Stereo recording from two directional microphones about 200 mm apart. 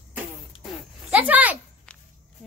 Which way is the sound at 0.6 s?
5° right (ahead or behind).